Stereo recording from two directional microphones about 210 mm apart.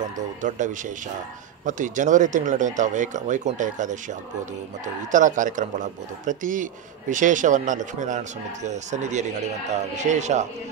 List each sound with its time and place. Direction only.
0.4 s speech: 35° right (ahead or behind)